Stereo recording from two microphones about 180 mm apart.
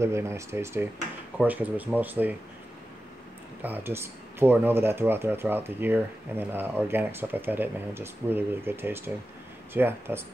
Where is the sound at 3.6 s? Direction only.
10° right (ahead or behind).